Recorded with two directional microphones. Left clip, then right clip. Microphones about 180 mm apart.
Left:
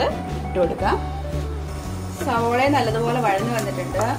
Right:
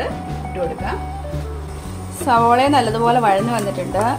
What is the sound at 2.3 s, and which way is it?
A woman's voice, 50° right (ahead or behind).